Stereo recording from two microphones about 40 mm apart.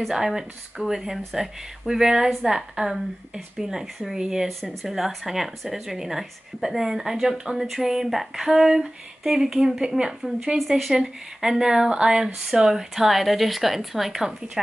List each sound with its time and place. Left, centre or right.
0.1 s speech: centre